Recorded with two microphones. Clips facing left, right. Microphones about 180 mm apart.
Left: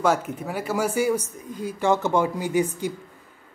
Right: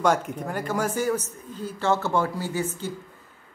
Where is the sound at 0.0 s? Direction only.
5° left (ahead or behind).